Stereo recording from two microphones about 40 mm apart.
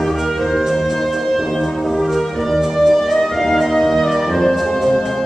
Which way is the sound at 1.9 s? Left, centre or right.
Centre.